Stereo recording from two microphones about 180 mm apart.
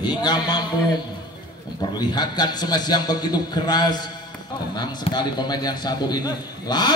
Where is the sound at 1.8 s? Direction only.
25° left (ahead or behind).